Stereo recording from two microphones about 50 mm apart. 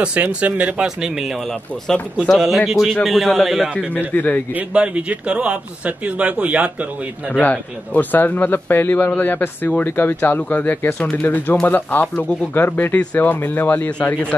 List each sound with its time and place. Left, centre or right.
0.0 s a man's voice: right
0.7 s a man's voice: centre
4.1 s a man's voice: left
4.7 s a man's voice: right
7.4 s a man's voice: left
13.8 s speech: left